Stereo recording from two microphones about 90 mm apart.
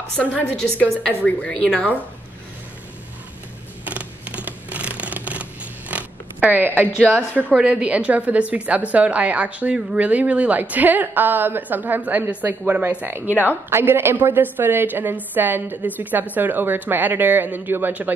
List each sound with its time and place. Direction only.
0.2 s a woman's voice: 15° left (ahead or behind)
3.8 s scissors: 15° right (ahead or behind)
7.5 s a woman's voice: 15° right (ahead or behind)